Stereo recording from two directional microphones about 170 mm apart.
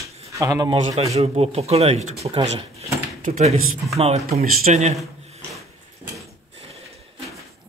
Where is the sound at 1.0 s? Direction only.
40° right (ahead or behind).